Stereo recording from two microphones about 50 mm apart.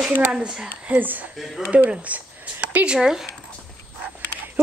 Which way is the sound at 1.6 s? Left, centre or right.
Right.